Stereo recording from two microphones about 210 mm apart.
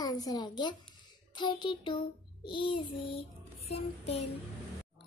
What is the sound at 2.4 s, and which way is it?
Child singing, 25° left (ahead or behind).